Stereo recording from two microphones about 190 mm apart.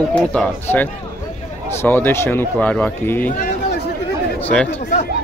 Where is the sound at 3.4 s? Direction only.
55° left (ahead or behind).